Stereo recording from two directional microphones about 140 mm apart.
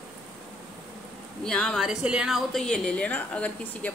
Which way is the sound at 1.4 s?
5° left (ahead or behind).